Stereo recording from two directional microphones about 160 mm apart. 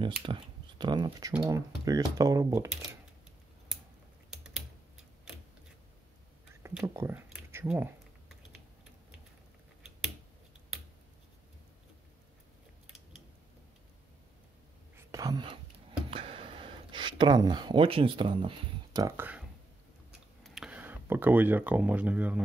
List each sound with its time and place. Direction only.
0.0 s speech: 30° right (ahead or behind)
4.3 s typing: 5° right (ahead or behind)
6.8 s speech: 15° right (ahead or behind)
7.6 s a sound: 5° right (ahead or behind)
15.0 s a sound: 20° right (ahead or behind)
18.9 s speech: 15° right (ahead or behind)
20.1 s clicking: 5° right (ahead or behind)